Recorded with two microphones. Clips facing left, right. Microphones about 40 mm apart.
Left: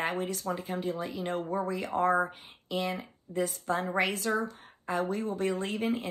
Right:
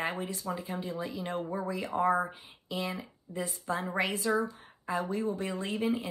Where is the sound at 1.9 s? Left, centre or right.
Centre.